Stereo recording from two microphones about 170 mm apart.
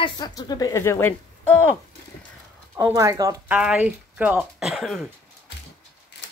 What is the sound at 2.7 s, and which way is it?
Speech, 15° right (ahead or behind).